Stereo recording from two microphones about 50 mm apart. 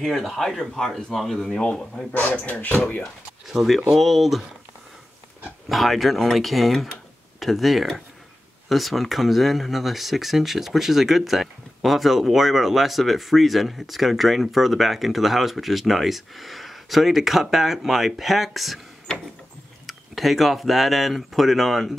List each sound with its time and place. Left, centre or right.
0.0 s speech: centre
0.4 s speech: centre
1.6 s speech: left
2.1 s speech: left
3.0 s speech: centre
5.7 s speech: centre
19.9 s speech: centre